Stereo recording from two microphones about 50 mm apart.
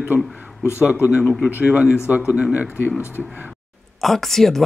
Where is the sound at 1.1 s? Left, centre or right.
Centre.